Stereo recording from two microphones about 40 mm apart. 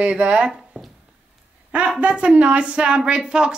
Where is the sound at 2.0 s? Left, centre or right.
Right.